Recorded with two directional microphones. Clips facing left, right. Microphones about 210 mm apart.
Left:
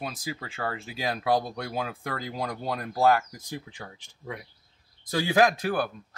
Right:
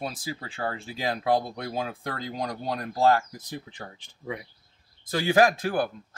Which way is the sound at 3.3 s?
10° left (ahead or behind).